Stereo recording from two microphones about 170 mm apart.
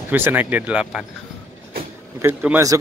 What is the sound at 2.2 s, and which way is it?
Speech, 15° right (ahead or behind).